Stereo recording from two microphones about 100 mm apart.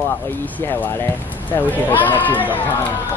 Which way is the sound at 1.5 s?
20° left (ahead or behind).